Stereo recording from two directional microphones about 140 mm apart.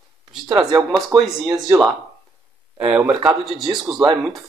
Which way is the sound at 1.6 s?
Centre (ahead or behind).